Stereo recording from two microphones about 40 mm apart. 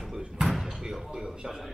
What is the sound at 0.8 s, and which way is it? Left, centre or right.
Speech, centre.